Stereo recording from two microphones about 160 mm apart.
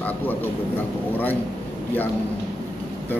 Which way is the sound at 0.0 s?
10° left (ahead or behind).